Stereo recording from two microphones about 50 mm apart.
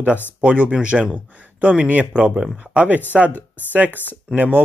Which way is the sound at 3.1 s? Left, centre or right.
Centre.